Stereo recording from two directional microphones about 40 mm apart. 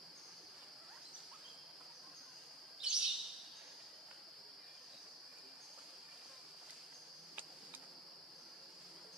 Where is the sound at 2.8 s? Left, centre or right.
Right.